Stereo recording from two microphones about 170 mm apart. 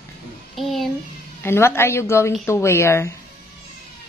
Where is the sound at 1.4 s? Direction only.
15° left (ahead or behind).